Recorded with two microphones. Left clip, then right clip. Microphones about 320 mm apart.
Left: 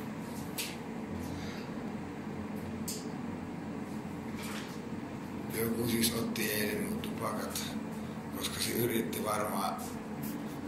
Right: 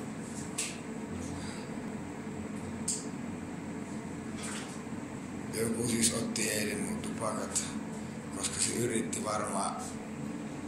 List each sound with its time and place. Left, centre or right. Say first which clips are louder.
5.9 s a man's voice: even; centre
8.5 s a man's voice: even; centre